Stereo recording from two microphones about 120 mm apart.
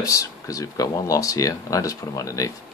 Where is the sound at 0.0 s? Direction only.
30° left (ahead or behind).